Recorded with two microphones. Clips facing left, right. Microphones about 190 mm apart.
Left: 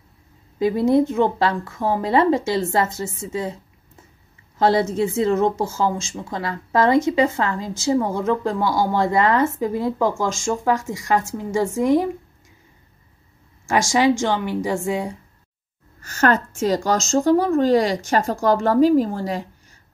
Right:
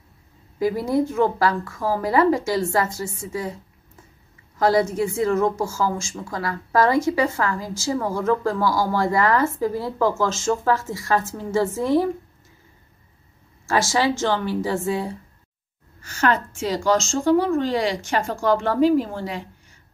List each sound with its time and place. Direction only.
0.6 s speech: 25° left (ahead or behind)
4.6 s speech: 25° left (ahead or behind)
13.7 s a woman's voice: 15° left (ahead or behind)
16.0 s speech: 45° left (ahead or behind)